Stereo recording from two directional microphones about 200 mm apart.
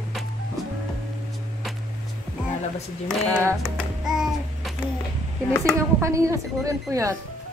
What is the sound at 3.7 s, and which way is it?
Babbling, centre (ahead or behind).